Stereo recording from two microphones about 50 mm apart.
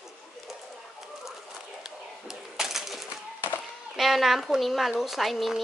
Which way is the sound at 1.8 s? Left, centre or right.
Centre.